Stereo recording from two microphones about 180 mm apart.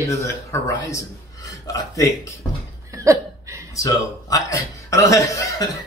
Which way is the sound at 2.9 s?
15° right (ahead or behind).